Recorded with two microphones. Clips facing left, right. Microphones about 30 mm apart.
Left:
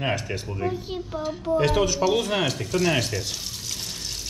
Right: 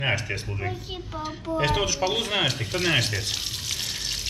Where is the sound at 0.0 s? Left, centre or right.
Right.